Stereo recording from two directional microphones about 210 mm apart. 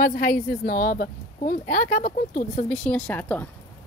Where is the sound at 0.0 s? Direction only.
40° left (ahead or behind).